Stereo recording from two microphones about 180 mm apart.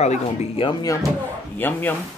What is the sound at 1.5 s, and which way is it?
Speech, 10° left (ahead or behind).